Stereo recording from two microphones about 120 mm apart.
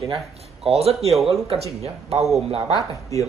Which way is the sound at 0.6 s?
60° right (ahead or behind).